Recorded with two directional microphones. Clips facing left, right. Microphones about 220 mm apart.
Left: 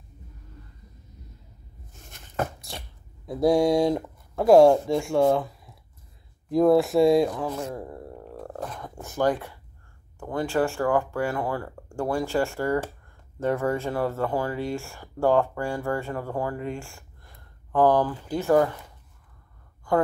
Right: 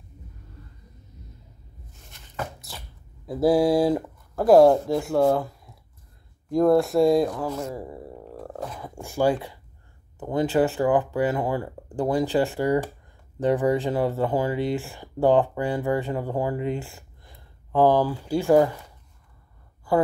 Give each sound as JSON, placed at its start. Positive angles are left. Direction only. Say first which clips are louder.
{"t": 3.3, "sound": "speech", "louder": "right 1 dB", "side_deg": -5}
{"t": 19.9, "sound": "a woman's voice", "louder": "right 1 dB", "side_deg": -5}